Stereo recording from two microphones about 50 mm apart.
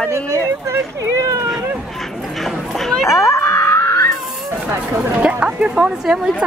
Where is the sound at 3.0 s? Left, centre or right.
Left.